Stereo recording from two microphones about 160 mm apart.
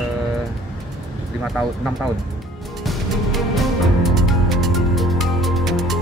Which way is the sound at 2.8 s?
Centre (ahead or behind).